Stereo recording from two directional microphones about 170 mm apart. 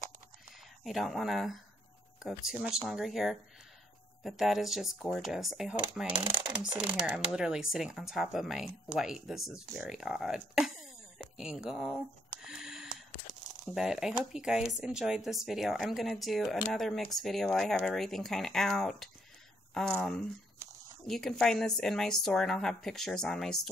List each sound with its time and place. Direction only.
0.8 s speech: centre (ahead or behind)
6.2 s speech: 30° right (ahead or behind)
6.8 s speech: 5° right (ahead or behind)
11.3 s a sound: 5° right (ahead or behind)
13.7 s speech: 5° right (ahead or behind)